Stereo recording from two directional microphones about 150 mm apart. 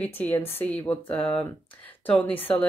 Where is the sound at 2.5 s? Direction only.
5° left (ahead or behind).